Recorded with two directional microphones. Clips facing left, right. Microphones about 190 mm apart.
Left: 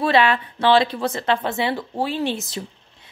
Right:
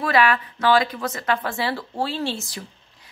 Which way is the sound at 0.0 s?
25° left (ahead or behind).